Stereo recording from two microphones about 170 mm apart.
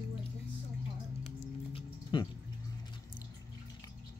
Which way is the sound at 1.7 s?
25° left (ahead or behind).